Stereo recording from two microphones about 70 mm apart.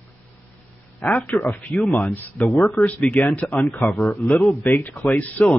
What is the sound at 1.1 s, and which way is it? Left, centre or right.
Speech, left.